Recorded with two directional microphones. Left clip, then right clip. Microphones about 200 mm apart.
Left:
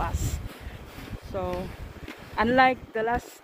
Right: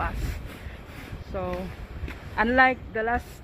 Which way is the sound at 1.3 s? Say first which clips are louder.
Even; 10° left (ahead or behind).